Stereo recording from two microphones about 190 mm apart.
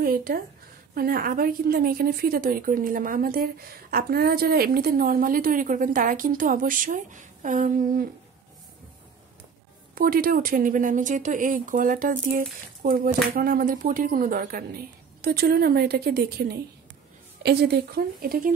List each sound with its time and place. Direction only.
0.0 s a woman's voice: 50° right (ahead or behind)
9.9 s a woman's voice: 50° right (ahead or behind)